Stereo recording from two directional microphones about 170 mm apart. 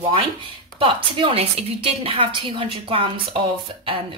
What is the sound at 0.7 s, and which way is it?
A woman's voice, 30° right (ahead or behind).